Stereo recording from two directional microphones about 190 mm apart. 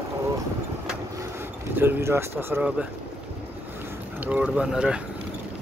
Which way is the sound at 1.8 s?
10° right (ahead or behind).